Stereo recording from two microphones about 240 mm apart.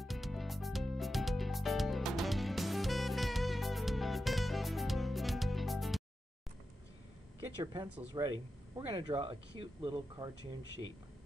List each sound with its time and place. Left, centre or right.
0.0 s music: centre
7.5 s speech: centre